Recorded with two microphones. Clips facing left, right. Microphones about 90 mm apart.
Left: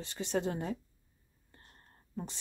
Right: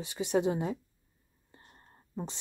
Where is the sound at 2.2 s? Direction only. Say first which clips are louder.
Right 3 dB; 20° right (ahead or behind).